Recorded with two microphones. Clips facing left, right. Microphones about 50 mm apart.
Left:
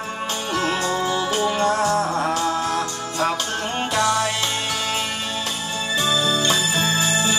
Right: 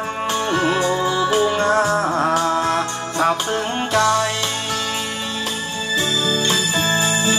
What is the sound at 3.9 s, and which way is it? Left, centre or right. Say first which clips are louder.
Music: right 4 dB; centre.